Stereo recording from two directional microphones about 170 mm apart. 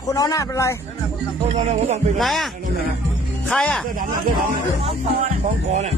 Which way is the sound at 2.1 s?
Centre (ahead or behind).